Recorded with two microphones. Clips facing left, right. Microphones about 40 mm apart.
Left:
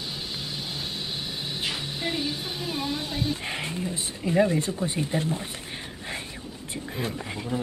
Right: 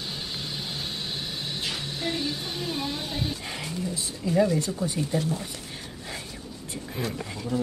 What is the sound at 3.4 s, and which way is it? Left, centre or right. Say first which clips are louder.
Speech: left 2 dB; left.